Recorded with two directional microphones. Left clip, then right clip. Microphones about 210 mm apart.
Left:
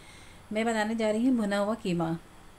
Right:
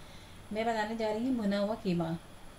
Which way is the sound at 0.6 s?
40° left (ahead or behind).